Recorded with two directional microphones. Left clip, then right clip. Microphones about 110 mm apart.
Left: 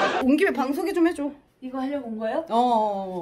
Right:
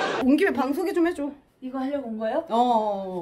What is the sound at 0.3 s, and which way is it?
Speech, 10° left (ahead or behind).